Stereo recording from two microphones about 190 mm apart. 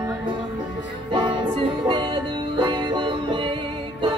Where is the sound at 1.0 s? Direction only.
25° right (ahead or behind).